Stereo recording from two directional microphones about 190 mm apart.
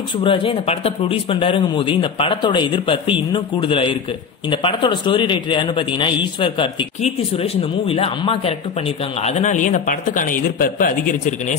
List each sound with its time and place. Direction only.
0.2 s speech: 25° left (ahead or behind); by 11.5 s 40° left (ahead or behind)